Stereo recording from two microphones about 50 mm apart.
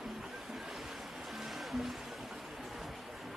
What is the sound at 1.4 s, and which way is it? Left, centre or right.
Music, centre.